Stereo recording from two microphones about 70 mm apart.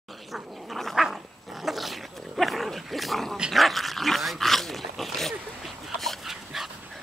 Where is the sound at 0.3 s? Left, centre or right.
Centre.